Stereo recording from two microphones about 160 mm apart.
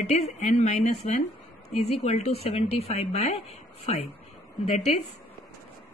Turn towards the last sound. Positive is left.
turn(degrees=40)  # may be behind; listen again after turning